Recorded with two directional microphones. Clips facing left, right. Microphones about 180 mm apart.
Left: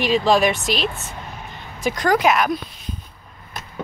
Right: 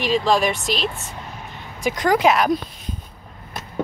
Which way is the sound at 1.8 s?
20° right (ahead or behind).